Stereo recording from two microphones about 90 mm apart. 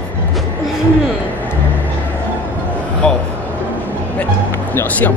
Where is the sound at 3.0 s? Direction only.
10° left (ahead or behind).